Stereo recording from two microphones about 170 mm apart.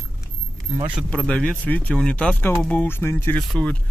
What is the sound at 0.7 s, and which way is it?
Speech, 35° right (ahead or behind).